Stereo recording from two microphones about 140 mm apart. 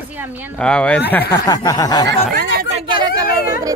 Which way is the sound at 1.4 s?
25° left (ahead or behind).